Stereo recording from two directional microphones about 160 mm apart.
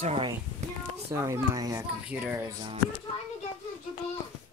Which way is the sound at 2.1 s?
10° right (ahead or behind).